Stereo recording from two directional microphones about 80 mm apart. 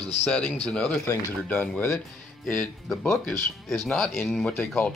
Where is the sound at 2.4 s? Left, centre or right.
Centre.